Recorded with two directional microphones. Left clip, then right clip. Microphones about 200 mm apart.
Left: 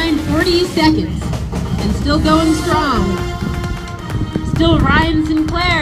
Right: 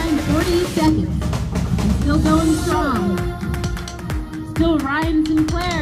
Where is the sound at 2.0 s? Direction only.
50° right (ahead or behind).